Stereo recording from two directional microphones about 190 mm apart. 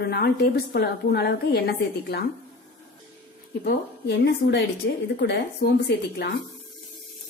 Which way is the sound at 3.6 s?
60° left (ahead or behind).